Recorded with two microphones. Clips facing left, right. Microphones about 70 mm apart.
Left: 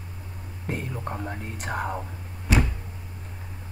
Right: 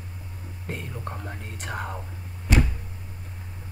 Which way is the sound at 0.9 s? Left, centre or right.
Centre.